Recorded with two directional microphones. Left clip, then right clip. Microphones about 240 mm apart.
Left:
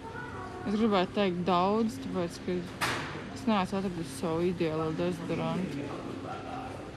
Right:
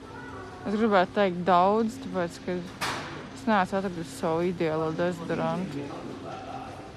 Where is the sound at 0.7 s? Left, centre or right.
Centre.